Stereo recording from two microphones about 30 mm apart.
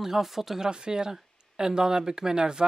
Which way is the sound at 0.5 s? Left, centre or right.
Right.